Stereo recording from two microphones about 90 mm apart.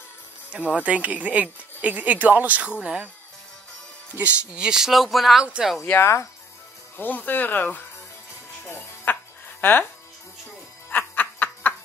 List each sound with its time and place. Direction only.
0.7 s speech: 15° right (ahead or behind)
4.2 s speech: 10° right (ahead or behind)
5.9 s speech: 30° left (ahead or behind)
7.0 s speech: 20° left (ahead or behind)
8.6 s music: 25° left (ahead or behind)
9.6 s speech: 20° left (ahead or behind)
10.9 s snicker: 20° left (ahead or behind)